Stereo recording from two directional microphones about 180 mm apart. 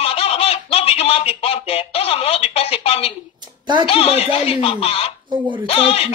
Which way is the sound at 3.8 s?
35° left (ahead or behind).